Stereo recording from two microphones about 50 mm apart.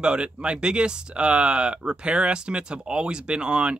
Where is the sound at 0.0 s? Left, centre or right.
Centre.